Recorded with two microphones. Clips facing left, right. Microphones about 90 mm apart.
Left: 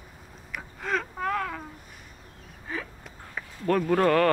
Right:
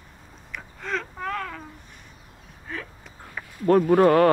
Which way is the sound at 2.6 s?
Centre (ahead or behind).